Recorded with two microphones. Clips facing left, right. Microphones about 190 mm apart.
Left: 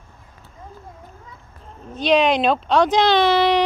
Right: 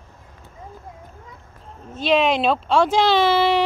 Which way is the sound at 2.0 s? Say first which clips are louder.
Left 2 dB; 5° right (ahead or behind).